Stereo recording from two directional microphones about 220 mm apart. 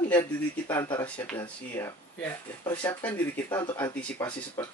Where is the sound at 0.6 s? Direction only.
15° left (ahead or behind).